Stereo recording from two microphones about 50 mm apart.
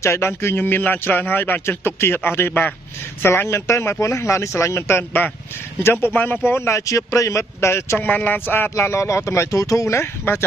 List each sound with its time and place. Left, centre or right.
0.0 s speech: left
0.3 s a man's voice: left
3.4 s speech: left
6.1 s speech: left
6.4 s a man's voice: left
6.7 s speech: left
8.0 s speech: left